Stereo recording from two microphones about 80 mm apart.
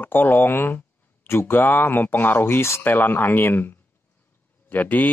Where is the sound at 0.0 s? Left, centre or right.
Left.